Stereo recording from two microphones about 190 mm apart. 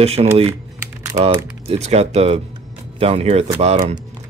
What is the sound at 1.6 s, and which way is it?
Speech, 35° right (ahead or behind).